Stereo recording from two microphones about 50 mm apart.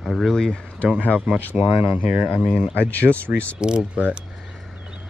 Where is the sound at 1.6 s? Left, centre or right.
Right.